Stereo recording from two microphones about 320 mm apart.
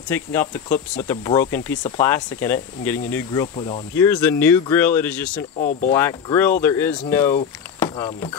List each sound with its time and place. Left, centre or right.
0.1 s speech: centre
5.6 s speech: left
5.9 s speech: centre